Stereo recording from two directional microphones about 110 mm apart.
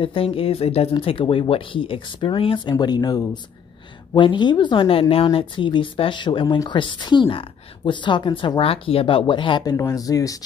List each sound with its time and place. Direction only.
0.0 s speech: 55° left (ahead or behind)
1.0 s a woman's voice: 55° left (ahead or behind)
2.8 s a woman's voice: 40° left (ahead or behind)